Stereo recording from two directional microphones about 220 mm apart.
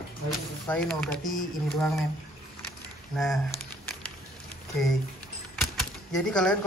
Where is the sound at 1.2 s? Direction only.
35° left (ahead or behind).